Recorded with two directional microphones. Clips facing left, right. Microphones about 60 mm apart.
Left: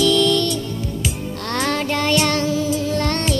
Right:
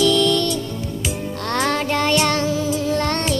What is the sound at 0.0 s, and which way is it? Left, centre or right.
Music, right.